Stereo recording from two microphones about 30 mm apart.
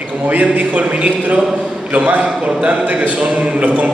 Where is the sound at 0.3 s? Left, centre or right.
Right.